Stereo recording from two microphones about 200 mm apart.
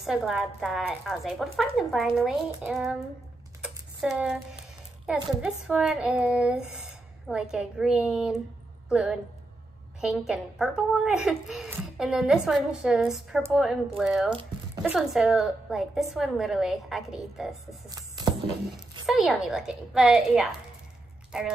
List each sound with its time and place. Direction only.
0.0 s a child's voice: centre (ahead or behind)
3.6 s typing: 5° right (ahead or behind)
5.0 s a child's voice: 5° right (ahead or behind)
17.8 s music: 20° right (ahead or behind)
19.0 s a child's voice: centre (ahead or behind)